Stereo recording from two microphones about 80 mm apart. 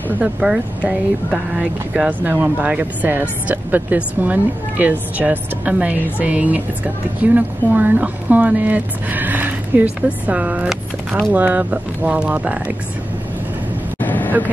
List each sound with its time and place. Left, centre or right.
0.2 s speech: centre
13.9 s vehicle: left